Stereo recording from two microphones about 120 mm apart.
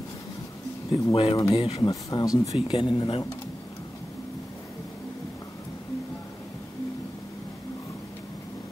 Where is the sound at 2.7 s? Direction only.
45° left (ahead or behind).